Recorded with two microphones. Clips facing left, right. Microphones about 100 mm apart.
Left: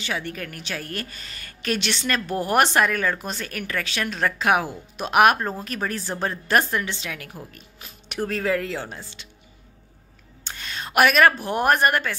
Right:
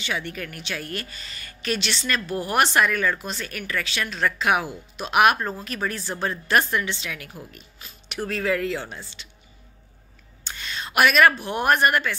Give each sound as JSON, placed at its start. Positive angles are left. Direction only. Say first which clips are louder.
{"t": 0.0, "sound": "a woman's voice", "louder": "even", "side_deg": 40}
{"t": 10.4, "sound": "a woman's voice", "louder": "even", "side_deg": 45}